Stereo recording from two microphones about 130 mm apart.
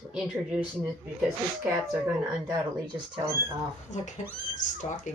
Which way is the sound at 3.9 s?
70° left (ahead or behind).